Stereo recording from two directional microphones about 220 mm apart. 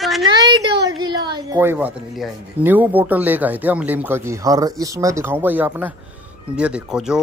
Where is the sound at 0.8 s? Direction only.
20° right (ahead or behind).